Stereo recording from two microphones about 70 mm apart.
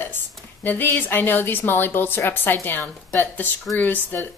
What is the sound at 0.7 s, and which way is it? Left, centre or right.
A woman's voice, left.